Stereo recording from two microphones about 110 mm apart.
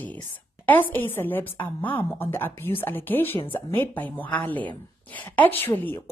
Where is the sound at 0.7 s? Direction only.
15° left (ahead or behind).